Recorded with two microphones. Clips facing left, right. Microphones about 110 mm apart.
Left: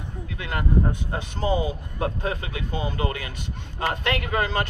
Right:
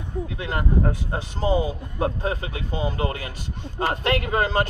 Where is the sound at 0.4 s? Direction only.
30° right (ahead or behind).